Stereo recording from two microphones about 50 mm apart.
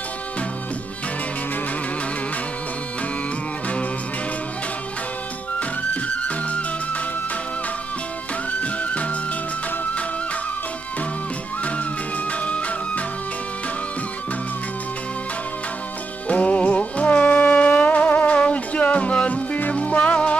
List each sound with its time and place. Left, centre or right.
6.2 s music: left
12.3 s music: left
16.3 s music: left